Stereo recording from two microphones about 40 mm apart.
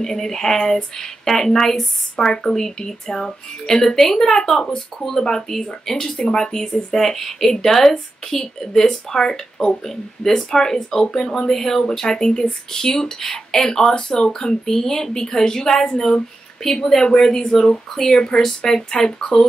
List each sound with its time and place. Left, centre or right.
0.0 s a woman's voice: centre